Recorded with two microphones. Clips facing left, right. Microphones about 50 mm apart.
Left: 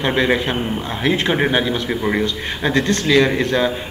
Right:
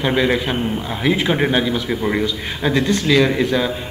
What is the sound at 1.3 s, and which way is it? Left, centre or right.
Speech, centre.